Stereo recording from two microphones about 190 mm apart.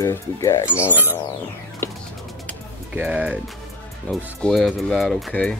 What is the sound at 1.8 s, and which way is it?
Music, 10° left (ahead or behind).